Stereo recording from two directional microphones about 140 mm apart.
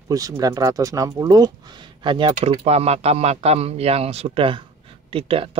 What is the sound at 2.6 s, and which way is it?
Speech, 50° right (ahead or behind).